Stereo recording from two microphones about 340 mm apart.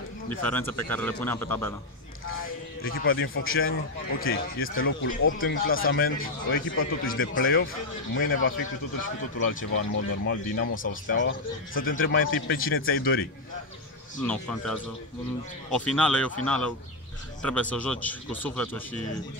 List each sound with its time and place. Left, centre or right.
0.3 s a man's voice: centre
2.8 s a man's voice: left
14.2 s a man's voice: centre